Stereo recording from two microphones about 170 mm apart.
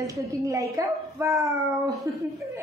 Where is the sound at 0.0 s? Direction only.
20° right (ahead or behind).